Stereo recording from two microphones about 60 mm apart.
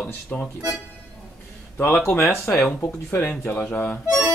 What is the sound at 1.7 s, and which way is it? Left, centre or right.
Speech, left.